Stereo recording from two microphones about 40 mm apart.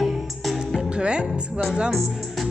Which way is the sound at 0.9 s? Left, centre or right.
Right.